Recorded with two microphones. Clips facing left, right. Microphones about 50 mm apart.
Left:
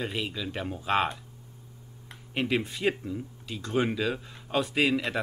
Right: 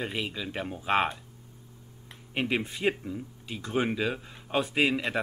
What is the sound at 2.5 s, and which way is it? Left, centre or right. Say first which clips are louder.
Speech: left 1 dB; centre.